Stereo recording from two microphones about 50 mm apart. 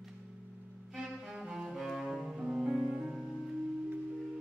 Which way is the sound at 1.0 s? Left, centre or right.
Centre.